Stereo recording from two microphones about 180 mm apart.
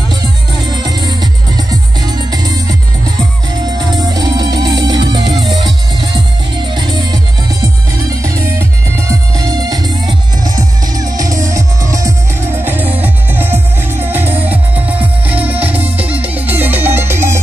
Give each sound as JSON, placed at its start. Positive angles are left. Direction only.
{"t": 0.8, "sound": "music", "side_deg": -20}
{"t": 3.7, "sound": "music", "side_deg": -25}
{"t": 8.2, "sound": "music", "side_deg": -15}